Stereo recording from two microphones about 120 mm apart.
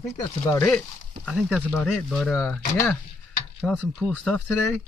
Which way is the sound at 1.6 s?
10° left (ahead or behind).